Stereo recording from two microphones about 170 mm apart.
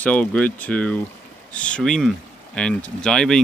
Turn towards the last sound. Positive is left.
turn(degrees=5)  # may be behind; listen again after turning